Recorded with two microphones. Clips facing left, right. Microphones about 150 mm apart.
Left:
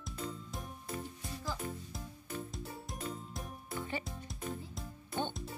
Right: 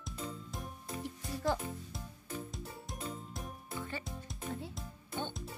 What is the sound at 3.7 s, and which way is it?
Music, 20° left (ahead or behind).